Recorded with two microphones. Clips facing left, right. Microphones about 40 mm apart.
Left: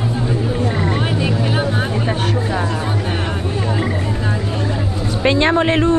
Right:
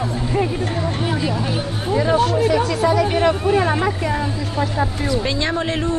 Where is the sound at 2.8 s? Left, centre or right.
Right.